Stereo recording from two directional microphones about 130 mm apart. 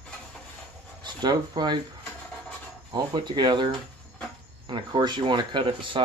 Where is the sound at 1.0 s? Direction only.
35° right (ahead or behind).